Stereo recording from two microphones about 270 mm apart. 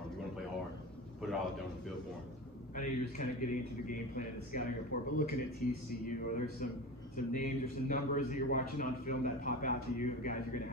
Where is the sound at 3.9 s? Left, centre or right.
Left.